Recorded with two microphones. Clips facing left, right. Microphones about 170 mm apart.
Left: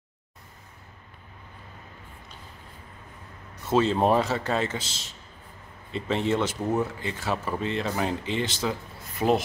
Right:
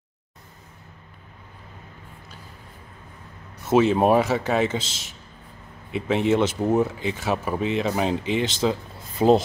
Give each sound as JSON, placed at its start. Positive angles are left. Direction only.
{"t": 3.7, "sound": "speech", "side_deg": -15}